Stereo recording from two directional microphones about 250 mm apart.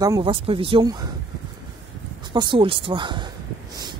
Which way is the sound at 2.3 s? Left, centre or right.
Centre.